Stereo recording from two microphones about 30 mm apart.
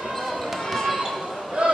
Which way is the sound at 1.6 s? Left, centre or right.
Right.